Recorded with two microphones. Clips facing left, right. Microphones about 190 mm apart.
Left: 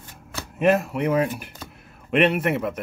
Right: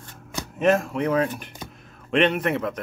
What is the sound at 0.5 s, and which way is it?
A man's voice, 5° left (ahead or behind).